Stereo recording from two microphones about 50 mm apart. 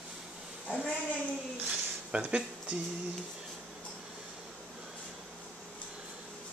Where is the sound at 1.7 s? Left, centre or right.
Right.